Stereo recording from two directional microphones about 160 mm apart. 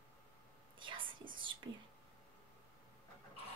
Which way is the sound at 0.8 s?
30° right (ahead or behind).